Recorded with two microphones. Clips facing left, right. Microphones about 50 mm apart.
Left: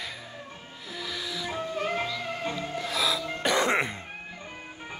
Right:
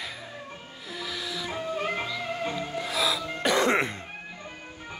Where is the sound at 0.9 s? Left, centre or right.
Centre.